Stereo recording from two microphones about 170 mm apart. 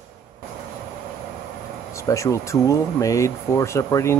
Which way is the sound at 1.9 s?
20° left (ahead or behind).